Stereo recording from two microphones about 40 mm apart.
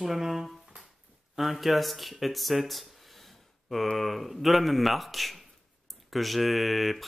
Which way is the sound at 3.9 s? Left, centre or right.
Centre.